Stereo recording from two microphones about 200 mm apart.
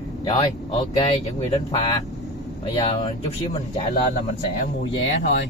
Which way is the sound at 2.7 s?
25° left (ahead or behind).